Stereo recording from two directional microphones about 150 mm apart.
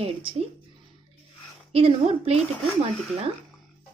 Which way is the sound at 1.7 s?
40° right (ahead or behind).